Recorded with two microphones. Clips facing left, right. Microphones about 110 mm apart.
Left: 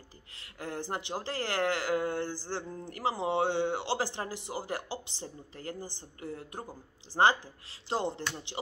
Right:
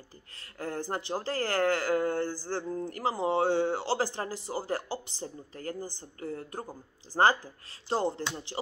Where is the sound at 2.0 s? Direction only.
45° right (ahead or behind).